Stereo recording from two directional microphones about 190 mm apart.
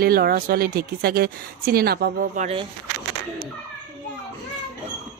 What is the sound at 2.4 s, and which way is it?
Speech, 30° right (ahead or behind).